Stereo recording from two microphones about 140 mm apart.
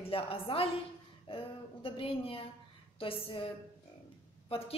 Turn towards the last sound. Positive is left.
turn(degrees=45)  # may be behind; listen again after turning